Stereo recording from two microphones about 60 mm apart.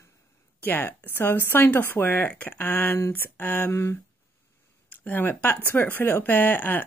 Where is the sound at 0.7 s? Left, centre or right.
Left.